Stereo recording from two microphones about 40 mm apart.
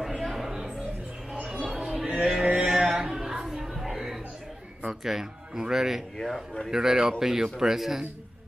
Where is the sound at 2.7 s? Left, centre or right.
Centre.